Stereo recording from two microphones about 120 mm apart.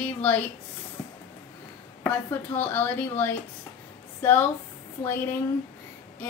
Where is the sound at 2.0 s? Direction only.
15° left (ahead or behind).